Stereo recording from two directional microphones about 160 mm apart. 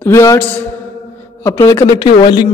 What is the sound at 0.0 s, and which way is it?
A man's voice, 20° left (ahead or behind).